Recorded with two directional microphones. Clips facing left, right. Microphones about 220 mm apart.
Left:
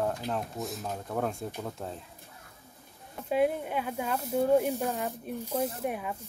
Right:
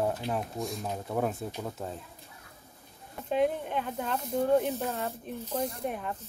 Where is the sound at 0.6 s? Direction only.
Centre (ahead or behind).